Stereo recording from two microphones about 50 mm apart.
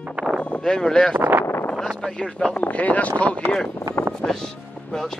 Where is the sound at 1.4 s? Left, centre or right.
Left.